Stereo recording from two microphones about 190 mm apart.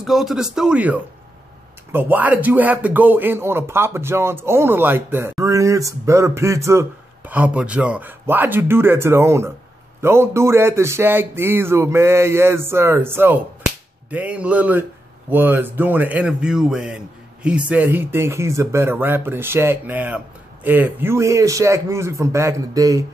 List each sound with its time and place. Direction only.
0.0 s a man's voice: centre (ahead or behind); by 23.0 s 20° right (ahead or behind)